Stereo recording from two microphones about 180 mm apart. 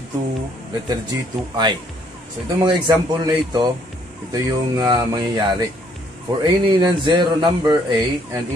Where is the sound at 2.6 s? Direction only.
25° right (ahead or behind).